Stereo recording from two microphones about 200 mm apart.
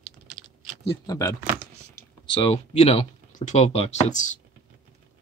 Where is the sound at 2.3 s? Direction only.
30° left (ahead or behind).